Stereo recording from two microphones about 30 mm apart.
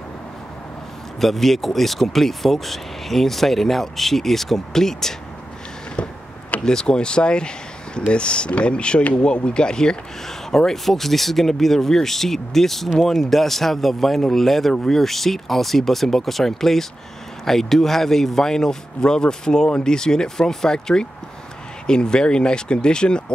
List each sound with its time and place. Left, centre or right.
1.2 s speech: centre
6.0 s a sound: left
6.6 s speech: left
10.5 s speech: centre; by 23.3 s left